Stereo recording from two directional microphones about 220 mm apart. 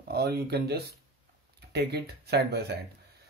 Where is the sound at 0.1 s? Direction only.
45° right (ahead or behind).